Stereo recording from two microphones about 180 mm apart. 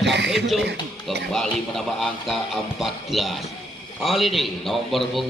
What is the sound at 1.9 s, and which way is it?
A man's voice, centre (ahead or behind).